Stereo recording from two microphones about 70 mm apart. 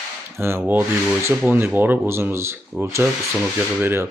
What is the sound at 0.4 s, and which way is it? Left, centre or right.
Speech, right.